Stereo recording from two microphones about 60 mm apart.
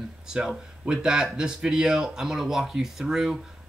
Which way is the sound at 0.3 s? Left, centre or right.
Centre.